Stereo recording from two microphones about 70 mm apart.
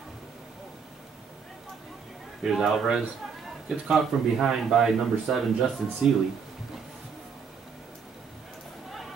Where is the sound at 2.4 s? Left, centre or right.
Centre.